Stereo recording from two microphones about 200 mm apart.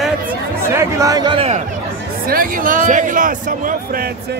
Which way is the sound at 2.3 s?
45° right (ahead or behind).